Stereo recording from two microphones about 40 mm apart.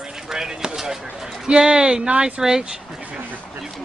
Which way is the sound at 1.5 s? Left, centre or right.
Right.